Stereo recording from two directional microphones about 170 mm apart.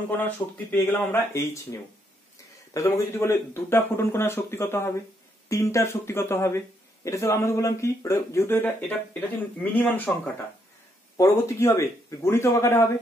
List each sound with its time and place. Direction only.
0.1 s speech: 10° left (ahead or behind)